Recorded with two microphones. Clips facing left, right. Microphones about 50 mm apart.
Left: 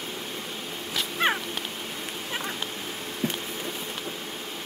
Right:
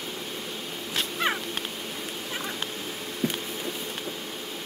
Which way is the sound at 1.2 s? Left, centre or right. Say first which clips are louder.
Left 3 dB; left.